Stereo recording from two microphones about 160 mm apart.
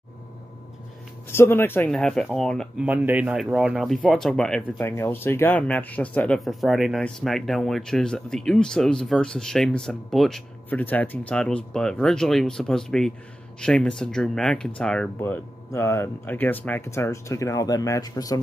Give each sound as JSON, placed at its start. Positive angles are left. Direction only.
{"t": 1.3, "sound": "speech", "side_deg": 15}
{"t": 1.9, "sound": "speech", "side_deg": 5}
{"t": 2.8, "sound": "speech", "side_deg": -10}